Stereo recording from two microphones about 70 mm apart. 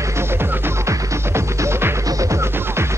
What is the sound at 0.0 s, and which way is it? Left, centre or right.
Music, right.